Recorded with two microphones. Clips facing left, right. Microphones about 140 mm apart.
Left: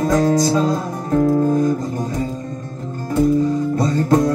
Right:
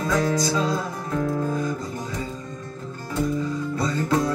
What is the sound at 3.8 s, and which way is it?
Music, 45° left (ahead or behind).